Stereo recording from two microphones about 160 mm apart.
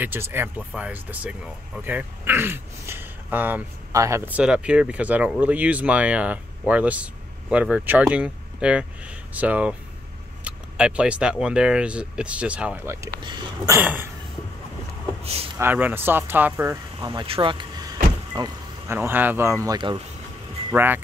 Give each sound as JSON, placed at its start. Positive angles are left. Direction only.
{"t": 0.0, "sound": "speech", "side_deg": -15}
{"t": 4.3, "sound": "speech", "side_deg": -5}
{"t": 13.2, "sound": "speech", "side_deg": -30}
{"t": 13.7, "sound": "speech", "side_deg": -15}
{"t": 15.5, "sound": "speech", "side_deg": -10}
{"t": 17.1, "sound": "vehicle", "side_deg": -30}
{"t": 18.9, "sound": "speech", "side_deg": -10}
{"t": 20.7, "sound": "speech", "side_deg": -10}